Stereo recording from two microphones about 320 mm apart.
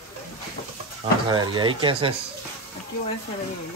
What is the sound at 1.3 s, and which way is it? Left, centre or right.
Speech, centre.